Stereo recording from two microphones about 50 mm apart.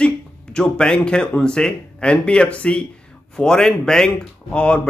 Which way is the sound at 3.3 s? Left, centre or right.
Centre.